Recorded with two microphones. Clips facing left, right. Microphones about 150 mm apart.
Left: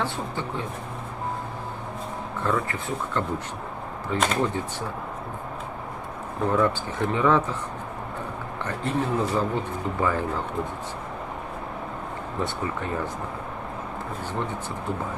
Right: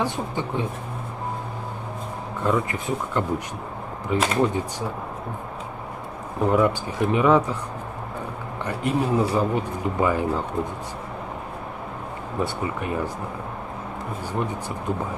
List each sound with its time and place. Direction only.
0.0 s speech: 15° right (ahead or behind)
2.4 s speech: 15° right (ahead or behind)
6.5 s speech: 15° right (ahead or behind)
8.6 s speech: 10° right (ahead or behind)
12.4 s speech: 15° right (ahead or behind)